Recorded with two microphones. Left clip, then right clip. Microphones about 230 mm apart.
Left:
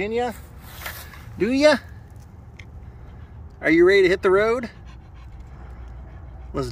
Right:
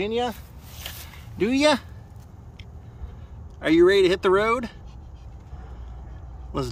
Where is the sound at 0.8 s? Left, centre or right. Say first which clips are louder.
Left 4 dB; centre.